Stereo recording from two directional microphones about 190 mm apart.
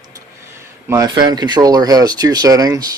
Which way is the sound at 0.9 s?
20° right (ahead or behind).